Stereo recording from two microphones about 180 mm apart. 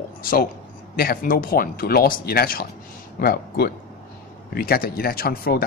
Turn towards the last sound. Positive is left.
turn(degrees=55)  # may be behind; listen again after turning